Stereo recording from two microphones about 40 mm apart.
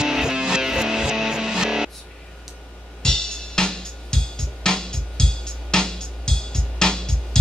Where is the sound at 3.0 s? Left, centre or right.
Centre.